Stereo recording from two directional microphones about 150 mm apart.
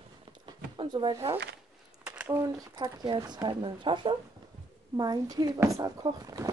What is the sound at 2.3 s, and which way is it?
Speech, 25° right (ahead or behind).